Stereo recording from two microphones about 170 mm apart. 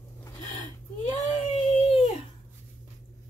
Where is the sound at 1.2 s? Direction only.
45° left (ahead or behind).